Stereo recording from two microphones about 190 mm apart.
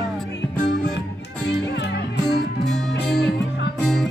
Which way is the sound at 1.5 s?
65° left (ahead or behind).